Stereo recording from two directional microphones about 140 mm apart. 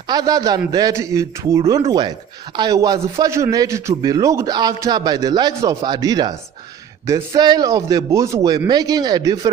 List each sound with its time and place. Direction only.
0.1 s speech: 25° right (ahead or behind)
1.9 s speech: 30° right (ahead or behind)